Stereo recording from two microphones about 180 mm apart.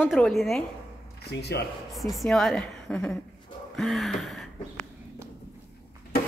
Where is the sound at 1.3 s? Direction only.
70° left (ahead or behind).